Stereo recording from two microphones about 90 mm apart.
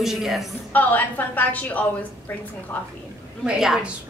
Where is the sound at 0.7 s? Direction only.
20° left (ahead or behind).